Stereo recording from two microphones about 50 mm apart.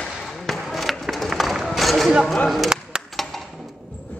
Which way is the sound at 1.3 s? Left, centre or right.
Centre.